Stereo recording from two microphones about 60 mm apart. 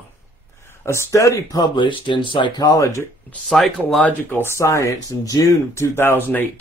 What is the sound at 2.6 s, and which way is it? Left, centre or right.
Speech, left.